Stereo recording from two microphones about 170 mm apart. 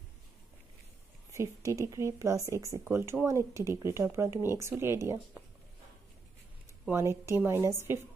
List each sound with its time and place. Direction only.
1.3 s speech: 15° right (ahead or behind)
6.9 s speech: 15° right (ahead or behind)